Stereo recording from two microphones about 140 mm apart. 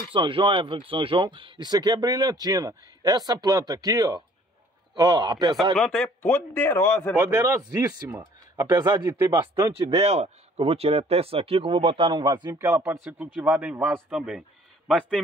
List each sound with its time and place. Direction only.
0.1 s speech: 35° right (ahead or behind)
5.8 s a man's voice: 5° left (ahead or behind)
7.2 s speech: 20° right (ahead or behind)
12.5 s speech: 20° right (ahead or behind)
13.0 s speech: 5° right (ahead or behind)